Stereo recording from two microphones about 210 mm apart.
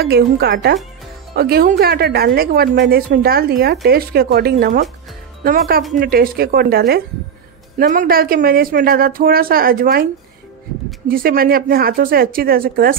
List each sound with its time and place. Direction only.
0.0 s speech: 50° right (ahead or behind)
5.9 s speech: 45° right (ahead or behind)
11.1 s speech: 45° right (ahead or behind)